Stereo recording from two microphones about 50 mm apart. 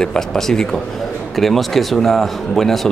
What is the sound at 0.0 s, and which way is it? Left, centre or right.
Speech, centre.